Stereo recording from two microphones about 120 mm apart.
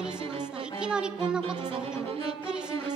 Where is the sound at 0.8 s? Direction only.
5° right (ahead or behind).